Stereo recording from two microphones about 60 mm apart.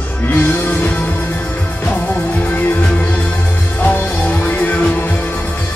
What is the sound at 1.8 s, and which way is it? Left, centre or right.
Music, left.